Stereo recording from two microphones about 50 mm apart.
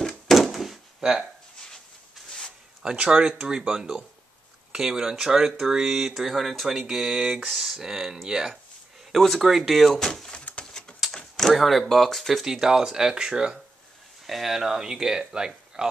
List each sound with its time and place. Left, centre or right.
0.3 s a sound: centre
2.8 s speech: centre
9.1 s speech: centre
10.6 s a sound: centre
11.1 s door: centre
11.9 s speech: centre
14.2 s speech: centre